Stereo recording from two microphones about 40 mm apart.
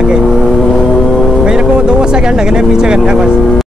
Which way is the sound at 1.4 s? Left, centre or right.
Right.